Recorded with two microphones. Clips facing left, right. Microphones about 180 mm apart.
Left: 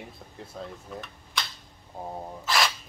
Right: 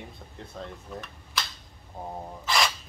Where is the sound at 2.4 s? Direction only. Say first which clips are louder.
Even; centre (ahead or behind).